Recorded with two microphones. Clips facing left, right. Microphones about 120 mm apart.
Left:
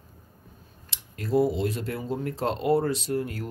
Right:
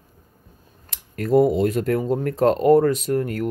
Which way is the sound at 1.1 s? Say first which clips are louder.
Right 7 dB; 55° right (ahead or behind).